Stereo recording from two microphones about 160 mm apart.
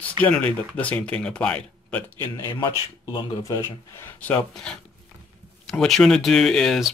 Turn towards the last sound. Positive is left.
turn(degrees=0)  # may be behind; listen again after turning